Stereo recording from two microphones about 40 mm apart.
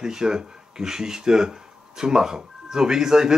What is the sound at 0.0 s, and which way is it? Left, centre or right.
Speech, centre.